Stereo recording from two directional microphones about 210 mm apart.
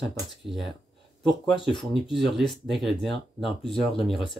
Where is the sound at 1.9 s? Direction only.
Centre (ahead or behind).